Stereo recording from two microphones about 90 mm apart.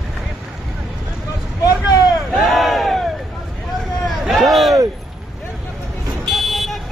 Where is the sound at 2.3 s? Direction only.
Centre (ahead or behind).